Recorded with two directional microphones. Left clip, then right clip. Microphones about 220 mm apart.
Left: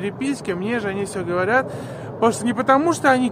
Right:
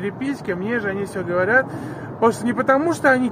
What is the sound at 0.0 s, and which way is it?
Speech, 5° left (ahead or behind).